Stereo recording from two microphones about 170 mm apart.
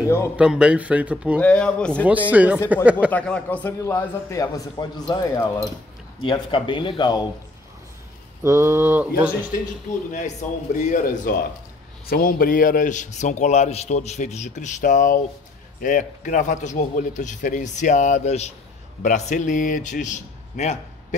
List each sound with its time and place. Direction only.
0.0 s a man's voice: 15° left (ahead or behind)
0.4 s speech: 5° right (ahead or behind)
1.4 s a man's voice: 5° left (ahead or behind)
2.3 s speech: 10° right (ahead or behind)
3.1 s a man's voice: 5° left (ahead or behind); by 7.2 s 25° left (ahead or behind)
8.4 s speech: 15° right (ahead or behind)
10.1 s a man's voice: 45° left (ahead or behind)